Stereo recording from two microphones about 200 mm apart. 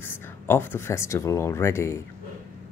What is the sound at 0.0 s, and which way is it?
Speech, 10° left (ahead or behind).